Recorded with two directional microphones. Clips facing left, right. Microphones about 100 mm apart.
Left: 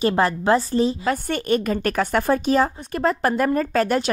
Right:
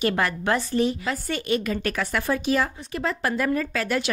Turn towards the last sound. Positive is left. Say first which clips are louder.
# left 6 dB
turn(degrees=40)  # may be behind; listen again after turning